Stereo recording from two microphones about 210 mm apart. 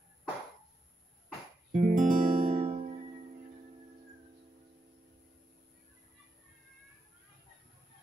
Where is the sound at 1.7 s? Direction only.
35° right (ahead or behind).